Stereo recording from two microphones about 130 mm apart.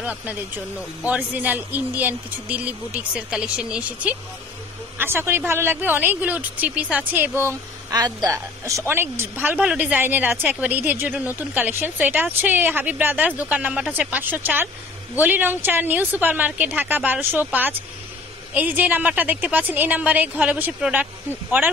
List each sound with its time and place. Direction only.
0.0 s a woman's voice: 10° right (ahead or behind)
7.9 s a woman's voice: 30° right (ahead or behind); by 21.7 s 15° right (ahead or behind)